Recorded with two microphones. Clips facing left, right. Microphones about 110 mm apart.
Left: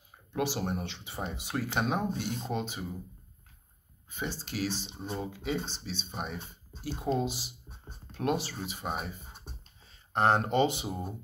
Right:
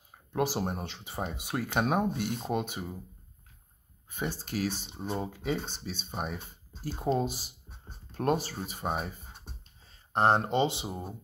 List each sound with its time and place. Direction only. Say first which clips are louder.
0.3 s speech: right 2 dB; 40° right (ahead or behind)
4.1 s speech: right 2 dB; 50° right (ahead or behind)
10.1 s speech: even; 30° right (ahead or behind)